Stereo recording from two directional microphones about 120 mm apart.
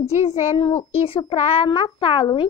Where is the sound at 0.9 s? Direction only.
50° left (ahead or behind).